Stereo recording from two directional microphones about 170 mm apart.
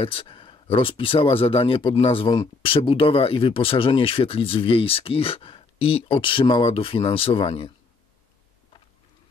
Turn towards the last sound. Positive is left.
turn(degrees=35)  # may be behind; listen again after turning